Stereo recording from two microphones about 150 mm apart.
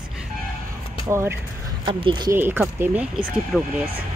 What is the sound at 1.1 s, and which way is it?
Speech, 15° right (ahead or behind).